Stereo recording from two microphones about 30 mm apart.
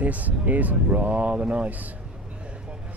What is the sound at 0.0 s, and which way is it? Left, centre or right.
Speech, right.